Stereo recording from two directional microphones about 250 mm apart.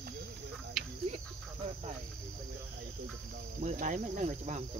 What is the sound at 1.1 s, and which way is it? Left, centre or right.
Cricket, right.